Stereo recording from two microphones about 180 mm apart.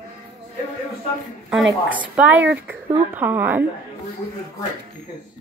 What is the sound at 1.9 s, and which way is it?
Speech, 10° right (ahead or behind).